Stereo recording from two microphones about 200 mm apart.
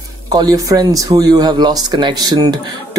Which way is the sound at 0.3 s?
20° right (ahead or behind).